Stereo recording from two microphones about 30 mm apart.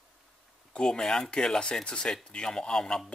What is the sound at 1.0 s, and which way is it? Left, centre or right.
Speech, centre.